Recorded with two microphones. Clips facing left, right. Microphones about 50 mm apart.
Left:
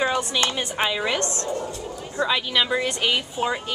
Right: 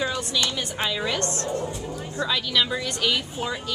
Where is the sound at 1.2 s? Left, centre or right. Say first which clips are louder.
Even; right.